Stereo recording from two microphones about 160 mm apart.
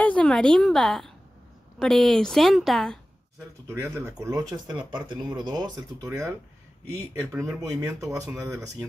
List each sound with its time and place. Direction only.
0.0 s a woman's voice: 5° left (ahead or behind)
3.6 s speech: 15° right (ahead or behind)
7.6 s speech: 20° right (ahead or behind)